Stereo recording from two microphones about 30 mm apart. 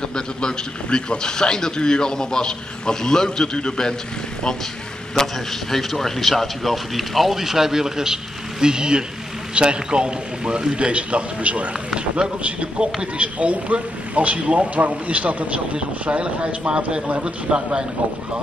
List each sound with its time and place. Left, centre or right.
0.1 s a man's voice: left
5.7 s a man's voice: centre; by 10.6 s right
10.7 s a man's voice: right
12.4 s a man's voice: right
13.2 s a man's voice: right